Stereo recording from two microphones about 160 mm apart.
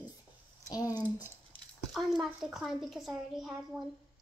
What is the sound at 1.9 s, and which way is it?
A woman's voice, centre (ahead or behind).